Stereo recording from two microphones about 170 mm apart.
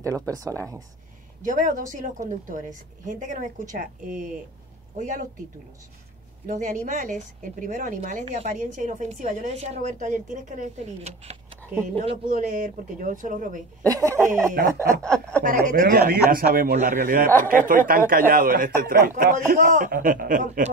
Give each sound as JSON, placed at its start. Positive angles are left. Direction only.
{"t": 0.3, "sound": "speech", "side_deg": -20}
{"t": 1.4, "sound": "a woman's voice", "side_deg": -50}
{"t": 6.4, "sound": "a woman's voice", "side_deg": -45}
{"t": 9.5, "sound": "a woman's voice", "side_deg": -40}
{"t": 13.8, "sound": "speech", "side_deg": -20}
{"t": 15.0, "sound": "speech", "side_deg": 5}
{"t": 15.6, "sound": "a woman's voice", "side_deg": -55}